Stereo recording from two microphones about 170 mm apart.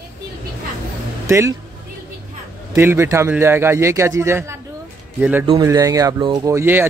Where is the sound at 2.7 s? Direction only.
15° right (ahead or behind).